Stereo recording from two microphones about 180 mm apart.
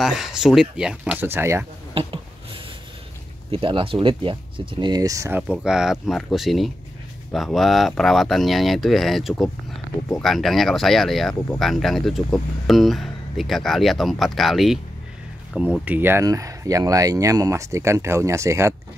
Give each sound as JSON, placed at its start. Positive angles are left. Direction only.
{"t": 0.0, "sound": "speech", "side_deg": -5}
{"t": 2.0, "sound": "a sound", "side_deg": -30}
{"t": 3.5, "sound": "speech", "side_deg": -30}
{"t": 5.5, "sound": "speech", "side_deg": -5}